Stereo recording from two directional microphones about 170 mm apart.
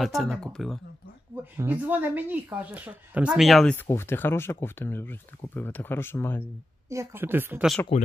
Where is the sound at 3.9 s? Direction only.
15° left (ahead or behind).